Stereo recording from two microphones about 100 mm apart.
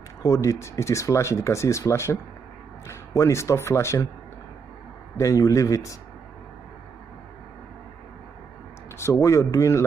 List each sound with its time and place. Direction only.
0.2 s speech: 35° left (ahead or behind)
5.1 s speech: 35° left (ahead or behind)
8.9 s speech: 25° left (ahead or behind)